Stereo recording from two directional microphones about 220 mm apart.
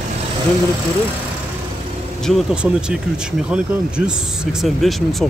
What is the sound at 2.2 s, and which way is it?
Speech, centre (ahead or behind).